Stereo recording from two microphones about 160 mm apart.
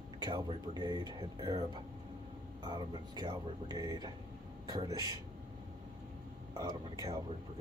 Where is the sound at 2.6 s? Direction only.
30° right (ahead or behind).